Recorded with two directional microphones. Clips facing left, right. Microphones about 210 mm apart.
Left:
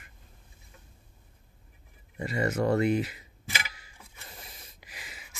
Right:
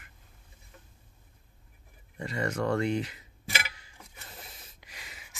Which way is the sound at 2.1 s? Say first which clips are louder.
Left 3 dB; 10° left (ahead or behind).